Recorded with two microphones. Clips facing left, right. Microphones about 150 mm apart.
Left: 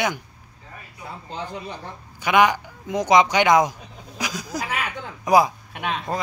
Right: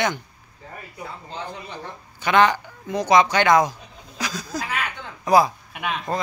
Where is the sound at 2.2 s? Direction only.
10° left (ahead or behind).